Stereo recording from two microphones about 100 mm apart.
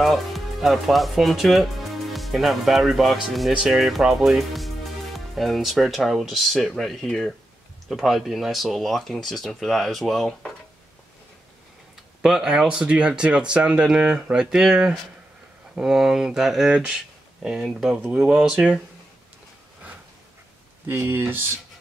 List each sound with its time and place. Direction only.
0.0 s speech: centre (ahead or behind)
12.2 s speech: 5° right (ahead or behind)
20.9 s speech: 25° right (ahead or behind)